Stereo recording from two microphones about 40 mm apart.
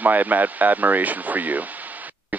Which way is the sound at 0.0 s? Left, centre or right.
Right.